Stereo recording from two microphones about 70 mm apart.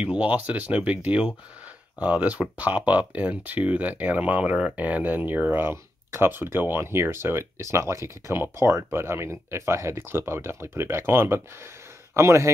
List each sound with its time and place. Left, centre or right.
0.0 s speech: centre; by 12.4 s right